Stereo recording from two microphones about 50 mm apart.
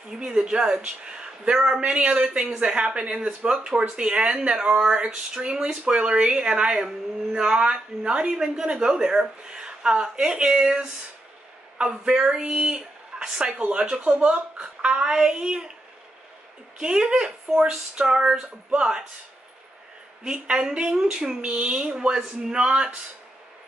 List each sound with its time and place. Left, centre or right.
0.1 s speech: centre
16.8 s speech: centre
20.2 s speech: centre
21.4 s speech: right